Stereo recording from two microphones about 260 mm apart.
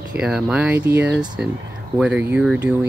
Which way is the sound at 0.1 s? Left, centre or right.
Centre.